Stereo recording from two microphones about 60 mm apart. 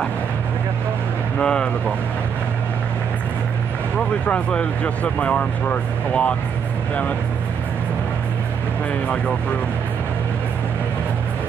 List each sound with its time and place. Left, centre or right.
1.4 s speech: centre
4.3 s speech: centre